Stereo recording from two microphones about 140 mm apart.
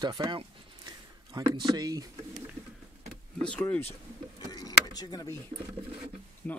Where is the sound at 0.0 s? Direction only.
30° right (ahead or behind).